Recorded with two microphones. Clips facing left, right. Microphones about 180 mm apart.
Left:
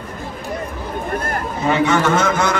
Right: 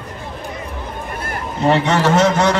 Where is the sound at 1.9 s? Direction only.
35° right (ahead or behind).